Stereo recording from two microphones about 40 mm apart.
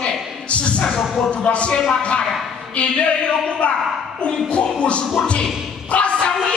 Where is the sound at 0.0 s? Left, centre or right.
Left.